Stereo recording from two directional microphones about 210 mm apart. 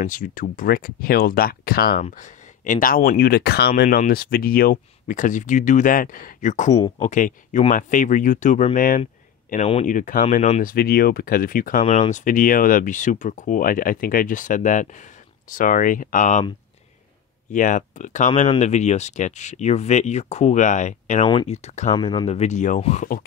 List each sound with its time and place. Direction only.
0.0 s speech: 40° left (ahead or behind)
2.0 s speech: 35° left (ahead or behind)
9.5 s speech: 30° left (ahead or behind)
11.8 s speech: 30° left (ahead or behind)
17.5 s speech: 35° left (ahead or behind)